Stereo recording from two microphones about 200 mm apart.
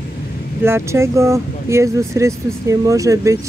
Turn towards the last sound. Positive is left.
turn(degrees=-15)  # may be behind; listen again after turning